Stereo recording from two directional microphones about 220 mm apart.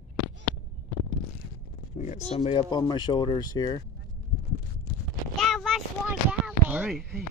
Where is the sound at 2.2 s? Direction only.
25° left (ahead or behind).